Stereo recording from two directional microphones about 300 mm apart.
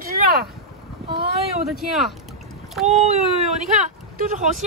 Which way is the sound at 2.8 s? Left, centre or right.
Right.